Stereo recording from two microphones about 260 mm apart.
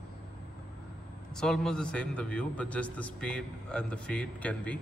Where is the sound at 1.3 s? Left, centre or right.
Centre.